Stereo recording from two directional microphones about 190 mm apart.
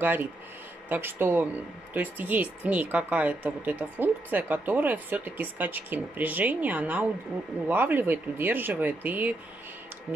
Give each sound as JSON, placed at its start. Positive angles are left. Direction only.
{"t": 0.0, "sound": "speech", "side_deg": -10}